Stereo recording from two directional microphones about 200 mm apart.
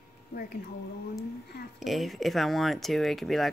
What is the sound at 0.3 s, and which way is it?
Speech, 45° left (ahead or behind).